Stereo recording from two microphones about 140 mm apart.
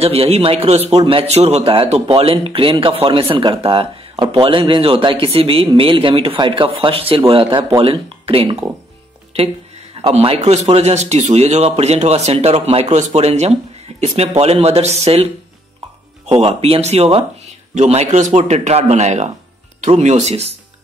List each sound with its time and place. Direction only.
0.0 s a man's voice: 45° right (ahead or behind)
10.0 s a man's voice: 40° right (ahead or behind)
16.3 s a man's voice: 45° right (ahead or behind)